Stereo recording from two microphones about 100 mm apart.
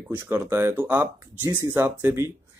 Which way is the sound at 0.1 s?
20° right (ahead or behind).